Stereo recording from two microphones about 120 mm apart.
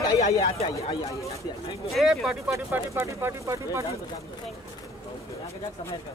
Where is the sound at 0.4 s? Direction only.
60° left (ahead or behind).